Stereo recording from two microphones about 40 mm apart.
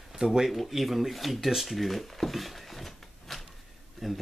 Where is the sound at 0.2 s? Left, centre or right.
Centre.